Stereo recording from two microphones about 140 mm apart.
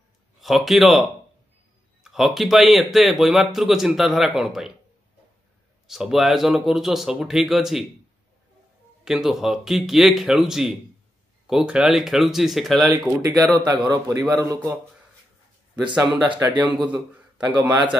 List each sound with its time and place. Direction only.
0.4 s a man's voice: centre (ahead or behind)
2.0 s a man's voice: centre (ahead or behind)
5.9 s a man's voice: 5° right (ahead or behind)
9.0 s a man's voice: 5° right (ahead or behind)
13.4 s a man's voice: 30° right (ahead or behind)
15.7 s speech: 10° right (ahead or behind)